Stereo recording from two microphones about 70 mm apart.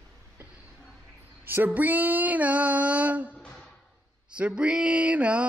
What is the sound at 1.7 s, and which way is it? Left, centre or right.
Female singing, right.